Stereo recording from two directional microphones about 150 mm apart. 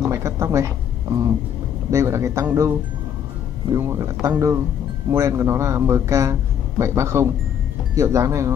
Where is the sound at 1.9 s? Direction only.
20° right (ahead or behind).